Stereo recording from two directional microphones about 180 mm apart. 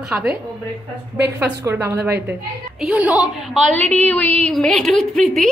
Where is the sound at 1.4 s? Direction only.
15° right (ahead or behind); by 3.9 s 5° left (ahead or behind).